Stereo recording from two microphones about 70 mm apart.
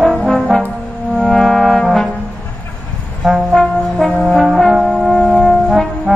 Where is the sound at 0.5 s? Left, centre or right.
Centre.